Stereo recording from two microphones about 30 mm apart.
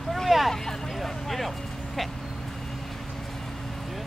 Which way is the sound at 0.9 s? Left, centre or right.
Centre.